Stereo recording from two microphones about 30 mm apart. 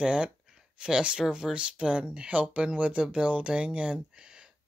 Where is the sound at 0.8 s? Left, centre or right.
Right.